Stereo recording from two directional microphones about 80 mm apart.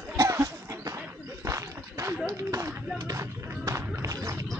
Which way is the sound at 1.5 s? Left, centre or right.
Right.